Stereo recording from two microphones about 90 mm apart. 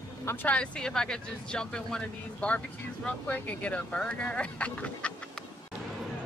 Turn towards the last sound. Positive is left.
turn(degrees=15)  # may be behind; listen again after turning